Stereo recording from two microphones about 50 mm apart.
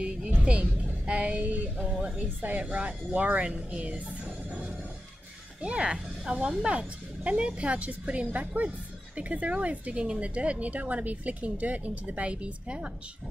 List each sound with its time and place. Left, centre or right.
0.0 s music: right
2.1 s a woman's voice: right
5.6 s a woman's voice: right